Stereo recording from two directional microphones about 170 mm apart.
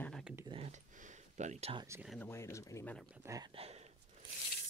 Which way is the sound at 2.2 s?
15° left (ahead or behind).